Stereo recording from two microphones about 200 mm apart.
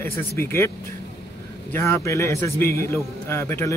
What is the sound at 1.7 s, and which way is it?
A man's voice, 15° left (ahead or behind).